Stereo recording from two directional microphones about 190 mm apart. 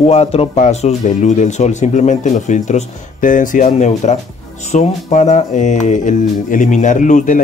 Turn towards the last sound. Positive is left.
turn(degrees=40)  # may be behind; listen again after turning